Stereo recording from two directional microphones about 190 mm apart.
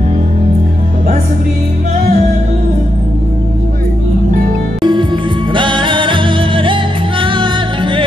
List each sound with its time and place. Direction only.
4.8 s music: 25° right (ahead or behind)